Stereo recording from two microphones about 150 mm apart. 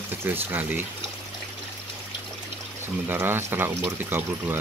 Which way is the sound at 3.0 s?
15° right (ahead or behind).